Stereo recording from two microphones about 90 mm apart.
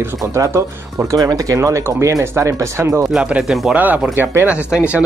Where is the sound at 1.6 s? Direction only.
30° right (ahead or behind).